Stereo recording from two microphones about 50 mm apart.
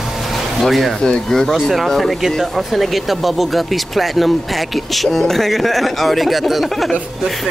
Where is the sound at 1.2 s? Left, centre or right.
Centre.